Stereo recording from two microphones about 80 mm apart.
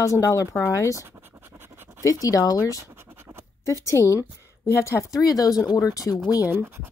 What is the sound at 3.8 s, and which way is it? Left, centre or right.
Speech, left.